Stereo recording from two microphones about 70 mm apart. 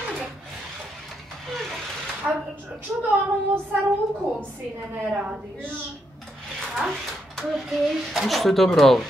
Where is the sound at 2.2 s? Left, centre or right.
Centre.